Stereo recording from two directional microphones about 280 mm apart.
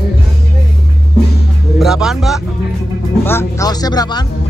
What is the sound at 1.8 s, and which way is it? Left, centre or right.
Speech, centre.